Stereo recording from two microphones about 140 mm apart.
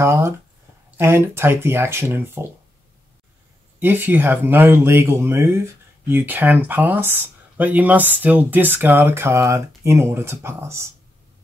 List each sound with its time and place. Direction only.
0.0 s speech: 20° right (ahead or behind)
3.8 s speech: 15° right (ahead or behind)